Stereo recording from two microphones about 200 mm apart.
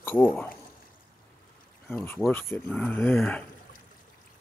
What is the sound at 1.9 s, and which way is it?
Speech, 10° left (ahead or behind).